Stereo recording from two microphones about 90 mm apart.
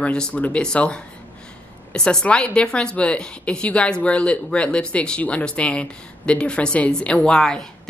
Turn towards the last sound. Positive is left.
turn(degrees=5)  # may be behind; listen again after turning